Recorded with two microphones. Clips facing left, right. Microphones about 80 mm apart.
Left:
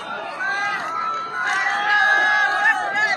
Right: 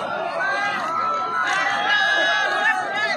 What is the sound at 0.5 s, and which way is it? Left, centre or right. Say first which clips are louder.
Run: even; centre.